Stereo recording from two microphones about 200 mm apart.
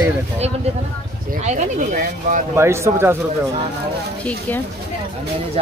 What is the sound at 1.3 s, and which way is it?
Speech, 35° right (ahead or behind).